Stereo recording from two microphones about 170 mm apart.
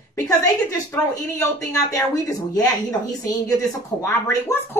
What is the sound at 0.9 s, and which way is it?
Speech, 15° left (ahead or behind).